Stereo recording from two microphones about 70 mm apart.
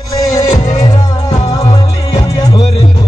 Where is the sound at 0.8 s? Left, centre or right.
Left.